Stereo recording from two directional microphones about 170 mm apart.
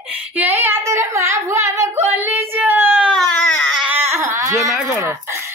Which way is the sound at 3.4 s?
10° left (ahead or behind).